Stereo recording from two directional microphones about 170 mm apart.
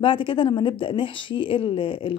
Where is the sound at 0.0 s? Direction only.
30° left (ahead or behind).